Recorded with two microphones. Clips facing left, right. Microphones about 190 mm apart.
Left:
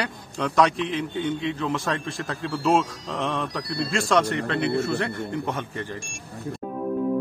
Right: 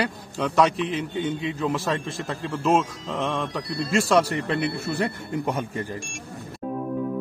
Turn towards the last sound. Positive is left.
turn(degrees=-10)  # may be behind; listen again after turning